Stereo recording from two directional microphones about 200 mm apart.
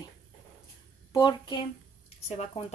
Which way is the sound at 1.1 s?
20° left (ahead or behind).